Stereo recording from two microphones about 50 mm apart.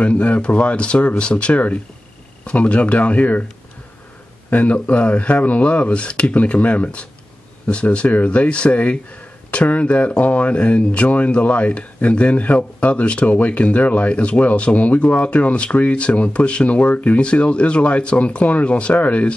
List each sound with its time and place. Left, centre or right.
0.0 s speech: left
4.5 s speech: left